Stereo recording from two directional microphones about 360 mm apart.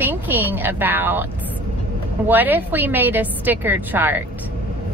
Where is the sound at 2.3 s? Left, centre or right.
Centre.